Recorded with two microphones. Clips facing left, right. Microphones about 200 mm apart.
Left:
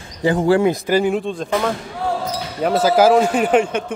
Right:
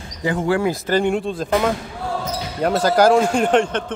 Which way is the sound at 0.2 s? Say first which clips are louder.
Left 4 dB; 30° left (ahead or behind).